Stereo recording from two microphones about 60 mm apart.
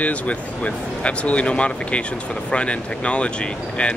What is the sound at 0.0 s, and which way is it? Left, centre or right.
A man's voice, left.